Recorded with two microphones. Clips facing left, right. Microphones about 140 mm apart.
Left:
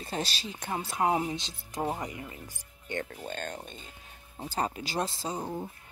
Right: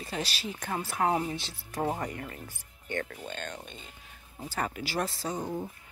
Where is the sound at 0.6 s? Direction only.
20° left (ahead or behind).